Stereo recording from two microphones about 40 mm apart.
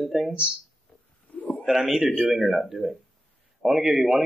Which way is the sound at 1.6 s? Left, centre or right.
Centre.